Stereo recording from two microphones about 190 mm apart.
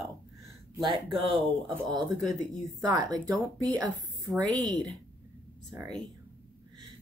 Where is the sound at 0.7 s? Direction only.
25° right (ahead or behind).